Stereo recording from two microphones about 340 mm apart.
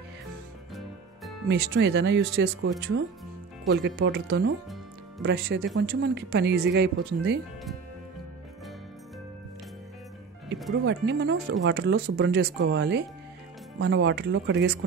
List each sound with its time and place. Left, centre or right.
1.5 s speech: right
10.7 s speech: right